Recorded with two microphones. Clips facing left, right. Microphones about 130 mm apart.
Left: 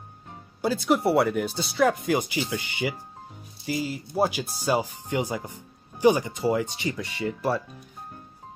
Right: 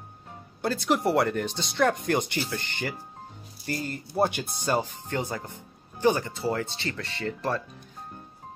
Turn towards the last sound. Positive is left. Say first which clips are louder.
# left 3 dB
turn(degrees=10)  # may be behind; listen again after turning